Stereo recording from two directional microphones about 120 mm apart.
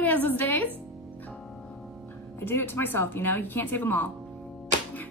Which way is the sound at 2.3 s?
20° left (ahead or behind).